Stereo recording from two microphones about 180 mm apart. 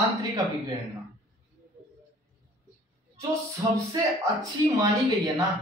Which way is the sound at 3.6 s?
15° right (ahead or behind).